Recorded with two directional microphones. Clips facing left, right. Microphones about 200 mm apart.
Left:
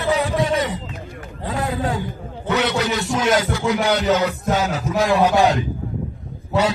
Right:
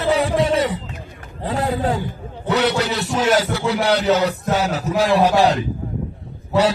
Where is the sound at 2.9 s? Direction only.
35° right (ahead or behind).